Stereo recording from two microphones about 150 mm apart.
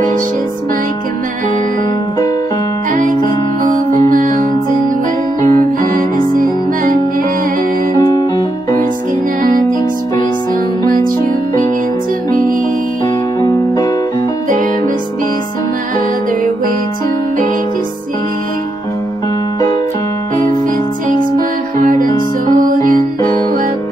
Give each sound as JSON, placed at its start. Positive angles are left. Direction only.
{"t": 4.1, "sound": "music", "side_deg": -60}
{"t": 8.0, "sound": "music", "side_deg": 25}
{"t": 9.4, "sound": "music", "side_deg": -65}
{"t": 21.2, "sound": "music", "side_deg": -60}